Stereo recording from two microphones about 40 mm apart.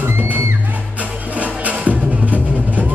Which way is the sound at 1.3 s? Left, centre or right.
Right.